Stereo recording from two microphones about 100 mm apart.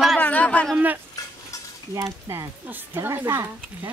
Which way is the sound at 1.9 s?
30° right (ahead or behind).